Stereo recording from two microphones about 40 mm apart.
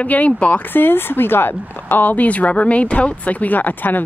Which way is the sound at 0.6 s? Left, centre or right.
Left.